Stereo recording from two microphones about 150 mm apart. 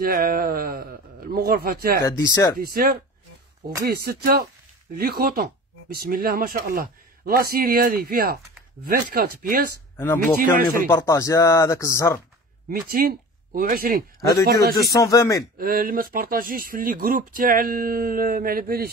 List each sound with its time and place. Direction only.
0.0 s a man's voice: 85° right
2.6 s speech: 75° right (ahead or behind)
3.8 s a man's voice: 90° right; by 9.7 s 75° right (ahead or behind)
9.9 s a man's voice: 15° left (ahead or behind)
12.6 s speech: 85° right
14.9 s a man's voice: 20° left (ahead or behind)
15.5 s speech: 70° right (ahead or behind)